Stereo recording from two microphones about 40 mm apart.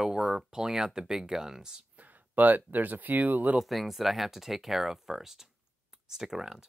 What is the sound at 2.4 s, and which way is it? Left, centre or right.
Speech, right.